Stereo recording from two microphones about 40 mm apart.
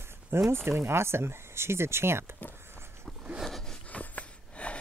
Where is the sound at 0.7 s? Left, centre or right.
Right.